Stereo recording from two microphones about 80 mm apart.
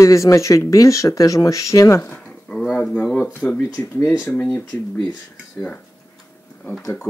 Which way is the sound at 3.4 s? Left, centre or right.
Left.